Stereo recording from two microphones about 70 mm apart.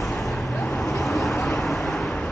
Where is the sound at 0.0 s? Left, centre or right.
Centre.